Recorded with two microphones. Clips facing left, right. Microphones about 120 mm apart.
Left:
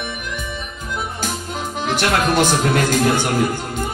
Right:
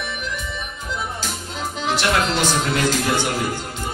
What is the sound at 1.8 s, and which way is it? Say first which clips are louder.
A man's voice: left 2 dB; 50° left (ahead or behind).